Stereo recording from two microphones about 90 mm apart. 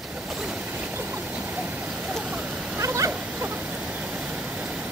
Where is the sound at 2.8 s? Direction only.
30° right (ahead or behind).